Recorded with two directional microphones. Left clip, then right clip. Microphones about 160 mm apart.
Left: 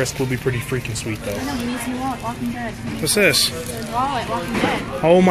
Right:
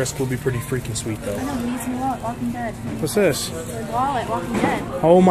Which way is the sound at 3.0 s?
15° right (ahead or behind).